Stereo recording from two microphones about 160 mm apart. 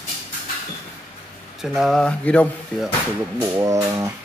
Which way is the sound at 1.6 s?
Centre (ahead or behind).